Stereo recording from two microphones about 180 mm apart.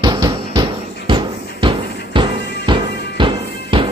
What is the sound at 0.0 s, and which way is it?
Basketball bounce, 25° right (ahead or behind).